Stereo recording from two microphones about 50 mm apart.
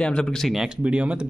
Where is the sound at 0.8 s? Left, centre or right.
Right.